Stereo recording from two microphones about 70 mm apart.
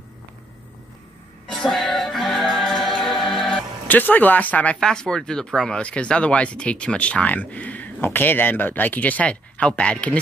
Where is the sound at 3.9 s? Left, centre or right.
Left.